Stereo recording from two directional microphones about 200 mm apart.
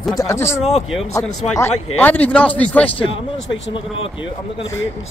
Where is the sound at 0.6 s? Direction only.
30° left (ahead or behind).